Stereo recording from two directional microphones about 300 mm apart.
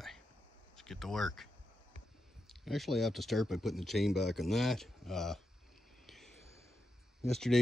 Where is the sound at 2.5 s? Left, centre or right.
Centre.